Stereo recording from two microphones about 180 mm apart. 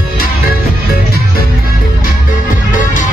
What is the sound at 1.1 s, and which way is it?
Music, 55° left (ahead or behind).